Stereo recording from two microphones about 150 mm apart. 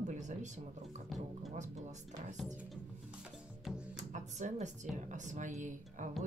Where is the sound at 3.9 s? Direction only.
50° right (ahead or behind).